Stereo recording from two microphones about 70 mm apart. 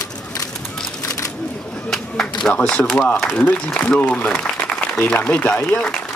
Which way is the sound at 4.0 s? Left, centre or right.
Left.